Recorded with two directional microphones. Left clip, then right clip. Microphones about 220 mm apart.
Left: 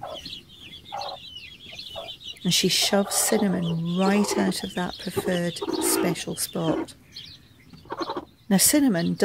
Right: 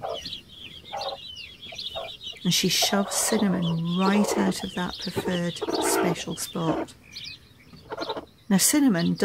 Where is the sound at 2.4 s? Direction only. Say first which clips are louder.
Left 1 dB; 15° left (ahead or behind).